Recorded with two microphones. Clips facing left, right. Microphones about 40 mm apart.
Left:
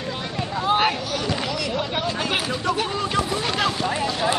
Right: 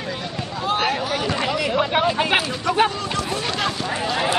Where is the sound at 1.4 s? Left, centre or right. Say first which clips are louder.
Right 5 dB; right.